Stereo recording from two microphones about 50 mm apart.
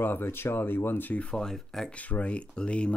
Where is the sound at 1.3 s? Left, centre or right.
Centre.